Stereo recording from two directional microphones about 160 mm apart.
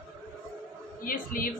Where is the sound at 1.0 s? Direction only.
60° left (ahead or behind).